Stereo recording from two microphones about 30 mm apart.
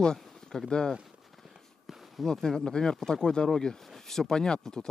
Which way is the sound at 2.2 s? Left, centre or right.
Centre.